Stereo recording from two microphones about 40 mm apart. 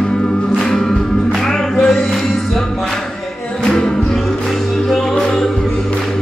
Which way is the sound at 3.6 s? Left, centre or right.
Centre.